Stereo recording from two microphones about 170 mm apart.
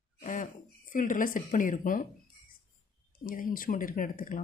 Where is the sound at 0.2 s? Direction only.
50° left (ahead or behind).